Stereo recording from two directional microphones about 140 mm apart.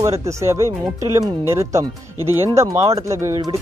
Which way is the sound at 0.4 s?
20° right (ahead or behind).